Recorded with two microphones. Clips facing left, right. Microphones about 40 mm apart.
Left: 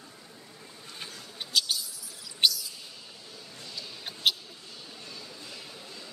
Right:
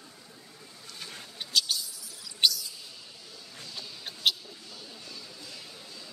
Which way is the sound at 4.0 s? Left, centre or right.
Centre.